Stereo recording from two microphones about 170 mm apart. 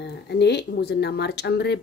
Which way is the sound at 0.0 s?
80° left.